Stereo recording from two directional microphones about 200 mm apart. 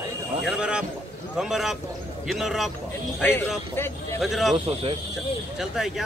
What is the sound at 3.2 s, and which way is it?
Speech, 10° left (ahead or behind).